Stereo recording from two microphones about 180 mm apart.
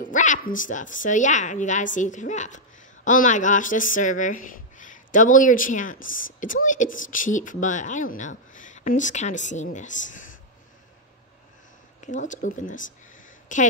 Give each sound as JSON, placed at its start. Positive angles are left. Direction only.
{"t": 0.0, "sound": "speech", "side_deg": 45}
{"t": 12.0, "sound": "speech", "side_deg": 45}